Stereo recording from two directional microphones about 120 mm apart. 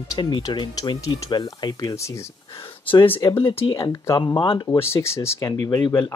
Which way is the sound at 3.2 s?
35° left (ahead or behind).